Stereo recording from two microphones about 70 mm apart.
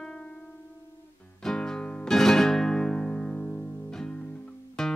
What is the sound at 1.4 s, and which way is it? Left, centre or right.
Music, centre.